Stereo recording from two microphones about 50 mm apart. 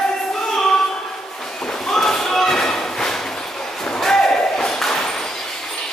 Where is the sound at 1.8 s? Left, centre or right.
Centre.